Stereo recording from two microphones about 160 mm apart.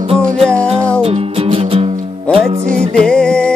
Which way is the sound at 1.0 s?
40° right (ahead or behind).